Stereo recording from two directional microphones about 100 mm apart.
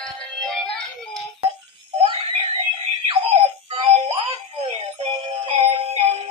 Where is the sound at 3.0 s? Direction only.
70° right (ahead or behind).